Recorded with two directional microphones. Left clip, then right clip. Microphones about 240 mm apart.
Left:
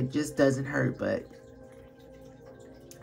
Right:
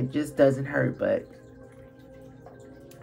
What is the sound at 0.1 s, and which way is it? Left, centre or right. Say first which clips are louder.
Speech: right 4 dB; left.